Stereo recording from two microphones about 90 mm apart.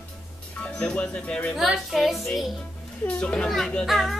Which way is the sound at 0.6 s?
10° left (ahead or behind).